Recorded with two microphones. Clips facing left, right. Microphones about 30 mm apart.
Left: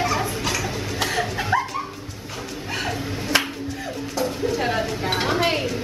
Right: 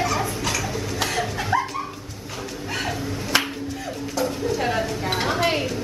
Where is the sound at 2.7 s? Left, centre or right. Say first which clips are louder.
Even; centre.